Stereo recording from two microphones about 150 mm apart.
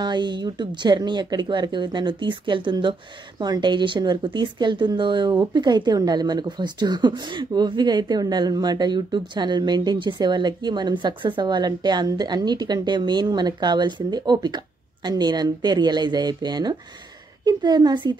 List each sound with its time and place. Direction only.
0.0 s speech: 30° right (ahead or behind)